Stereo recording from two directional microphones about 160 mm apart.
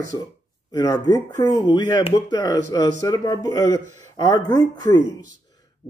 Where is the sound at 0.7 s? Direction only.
25° left (ahead or behind).